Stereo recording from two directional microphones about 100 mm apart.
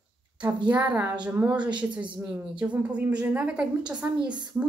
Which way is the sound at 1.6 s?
50° right (ahead or behind).